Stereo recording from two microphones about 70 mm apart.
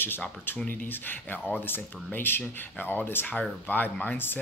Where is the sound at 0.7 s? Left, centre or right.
Left.